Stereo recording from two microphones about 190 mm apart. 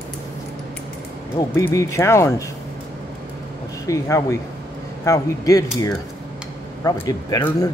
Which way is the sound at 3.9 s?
15° left (ahead or behind).